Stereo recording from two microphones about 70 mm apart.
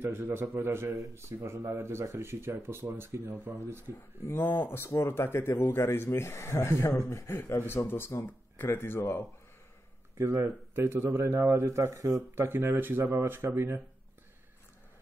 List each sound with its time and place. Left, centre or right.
0.0 s speech: right
4.3 s speech: left
10.1 s speech: right
12.4 s speech: right